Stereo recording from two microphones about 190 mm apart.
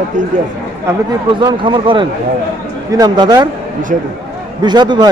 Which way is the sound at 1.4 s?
25° right (ahead or behind).